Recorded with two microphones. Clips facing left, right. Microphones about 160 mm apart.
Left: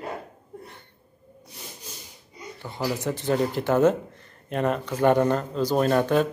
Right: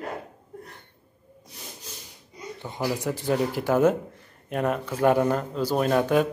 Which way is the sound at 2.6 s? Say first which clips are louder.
Even; 15° right (ahead or behind).